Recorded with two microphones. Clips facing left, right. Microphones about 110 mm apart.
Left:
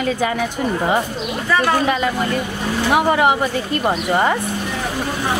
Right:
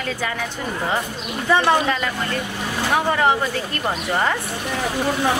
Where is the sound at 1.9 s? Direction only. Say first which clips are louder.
Left 4 dB; 15° left (ahead or behind).